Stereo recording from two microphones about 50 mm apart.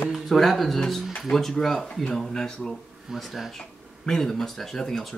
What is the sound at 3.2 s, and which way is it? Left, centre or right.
Speech, centre.